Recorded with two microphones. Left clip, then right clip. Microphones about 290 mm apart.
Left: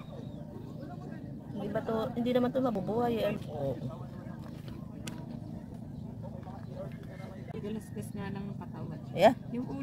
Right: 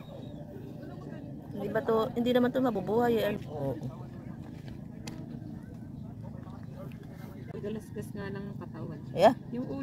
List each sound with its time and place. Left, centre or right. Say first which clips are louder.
1.6 s speech: right 5 dB; centre
8.2 s speech: right 1 dB; centre